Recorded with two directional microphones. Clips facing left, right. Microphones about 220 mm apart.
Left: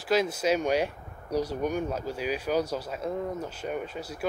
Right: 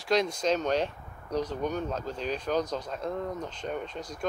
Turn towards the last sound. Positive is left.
turn(degrees=5)  # may be behind; listen again after turning